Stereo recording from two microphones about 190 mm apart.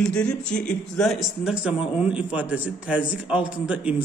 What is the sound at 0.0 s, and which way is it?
A man's voice, 5° left (ahead or behind).